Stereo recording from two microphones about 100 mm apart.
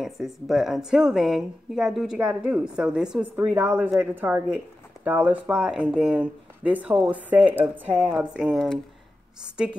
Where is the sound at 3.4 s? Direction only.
20° right (ahead or behind).